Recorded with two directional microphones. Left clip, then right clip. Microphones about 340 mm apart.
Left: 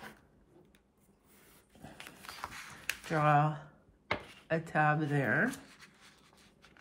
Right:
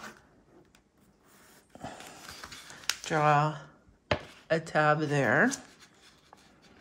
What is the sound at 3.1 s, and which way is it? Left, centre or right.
Speech, centre.